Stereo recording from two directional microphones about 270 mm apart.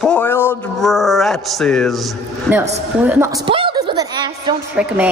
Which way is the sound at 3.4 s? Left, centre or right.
Centre.